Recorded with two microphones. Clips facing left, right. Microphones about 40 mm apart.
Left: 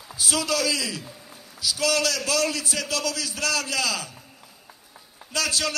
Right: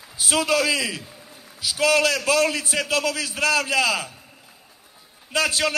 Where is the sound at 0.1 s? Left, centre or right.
Right.